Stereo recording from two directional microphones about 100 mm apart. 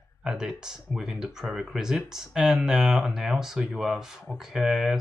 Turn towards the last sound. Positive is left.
turn(degrees=-5)  # may be behind; listen again after turning